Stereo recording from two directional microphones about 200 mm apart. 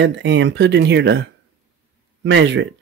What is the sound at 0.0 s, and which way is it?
Speech, 65° right (ahead or behind).